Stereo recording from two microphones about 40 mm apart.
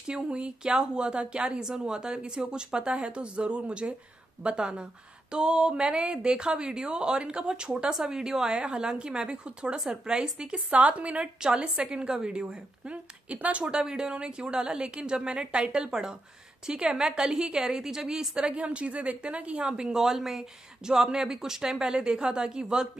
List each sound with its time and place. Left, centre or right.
0.1 s a woman's voice: right
1.6 s a woman's voice: centre; by 11.2 s right
11.4 s a woman's voice: centre
12.8 s a woman's voice: right
13.7 s a woman's voice: right
18.6 s a woman's voice: right